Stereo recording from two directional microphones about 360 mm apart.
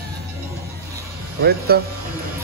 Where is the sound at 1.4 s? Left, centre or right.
Right.